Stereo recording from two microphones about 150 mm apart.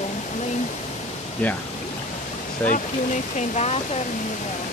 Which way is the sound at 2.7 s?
55° left (ahead or behind).